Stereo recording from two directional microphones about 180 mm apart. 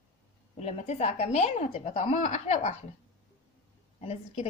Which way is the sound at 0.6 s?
35° left (ahead or behind).